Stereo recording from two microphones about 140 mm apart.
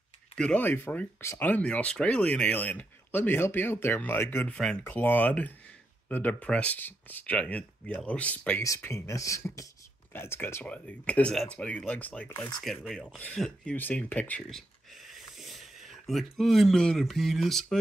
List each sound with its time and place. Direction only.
0.4 s speech: 10° left (ahead or behind)
8.6 s speech: 20° left (ahead or behind)
14.5 s a sound: centre (ahead or behind)